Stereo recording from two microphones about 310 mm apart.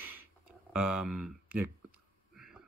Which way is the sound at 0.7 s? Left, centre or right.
Centre.